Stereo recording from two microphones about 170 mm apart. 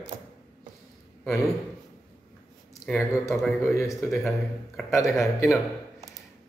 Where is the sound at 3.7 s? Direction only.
15° left (ahead or behind).